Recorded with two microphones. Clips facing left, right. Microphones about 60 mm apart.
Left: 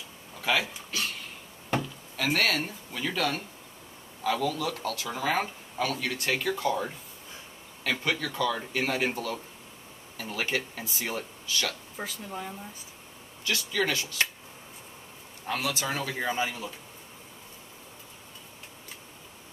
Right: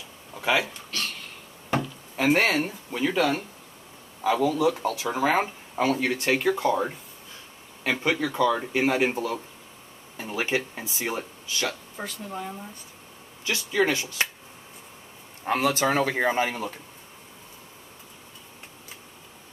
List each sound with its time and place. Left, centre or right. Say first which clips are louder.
0.3 s speech: right 3 dB; centre
0.9 s a sound: even; centre
2.3 s speech: right 4 dB; right
2.6 s speech: right 6 dB; centre
12.0 s speech: right 2 dB; centre
13.4 s speech: right 4 dB; right
15.4 s a man's voice: right 8 dB; right